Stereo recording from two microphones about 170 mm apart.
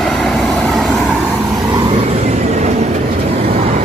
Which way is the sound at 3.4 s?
35° right (ahead or behind).